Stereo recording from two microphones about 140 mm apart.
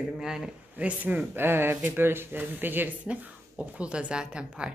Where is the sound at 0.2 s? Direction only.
5° right (ahead or behind).